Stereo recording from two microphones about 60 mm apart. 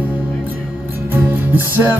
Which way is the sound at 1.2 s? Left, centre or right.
Right.